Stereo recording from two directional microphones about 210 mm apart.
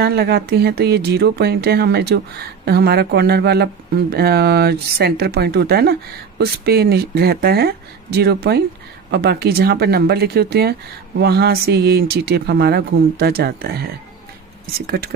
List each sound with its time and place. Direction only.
0.0 s speech: 50° right (ahead or behind)